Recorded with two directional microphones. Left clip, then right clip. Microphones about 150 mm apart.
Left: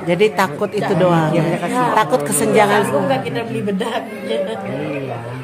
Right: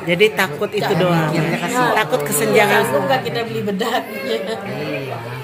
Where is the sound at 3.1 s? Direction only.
10° left (ahead or behind).